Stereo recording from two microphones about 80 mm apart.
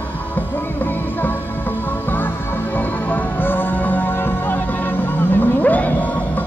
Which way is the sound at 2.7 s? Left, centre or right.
Left.